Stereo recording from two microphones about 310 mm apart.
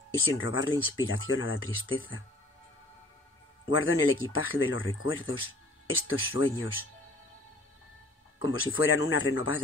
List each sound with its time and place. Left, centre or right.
0.2 s speech: left
3.7 s speech: left
8.4 s speech: left